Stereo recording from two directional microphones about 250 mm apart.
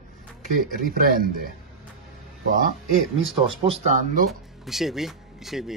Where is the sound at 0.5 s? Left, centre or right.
Right.